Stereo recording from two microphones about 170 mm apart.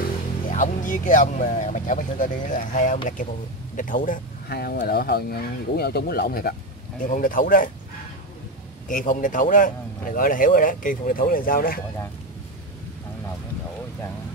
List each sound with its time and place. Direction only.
0.0 s a man's voice: 50° left (ahead or behind)
8.8 s a man's voice: 55° left (ahead or behind)